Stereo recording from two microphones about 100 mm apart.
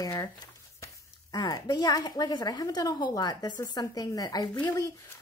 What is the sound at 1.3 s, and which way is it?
A woman's voice, 45° left (ahead or behind).